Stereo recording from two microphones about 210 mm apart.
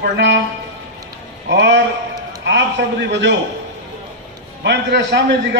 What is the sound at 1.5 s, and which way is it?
Speech, 55° right (ahead or behind).